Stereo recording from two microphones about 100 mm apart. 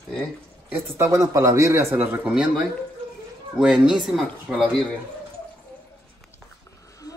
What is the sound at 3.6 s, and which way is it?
Speech, 5° right (ahead or behind).